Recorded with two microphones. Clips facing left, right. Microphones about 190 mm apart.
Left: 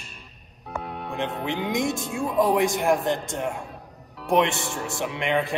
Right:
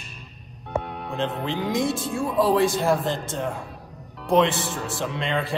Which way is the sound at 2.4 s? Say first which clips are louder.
Right 1 dB; 15° left (ahead or behind).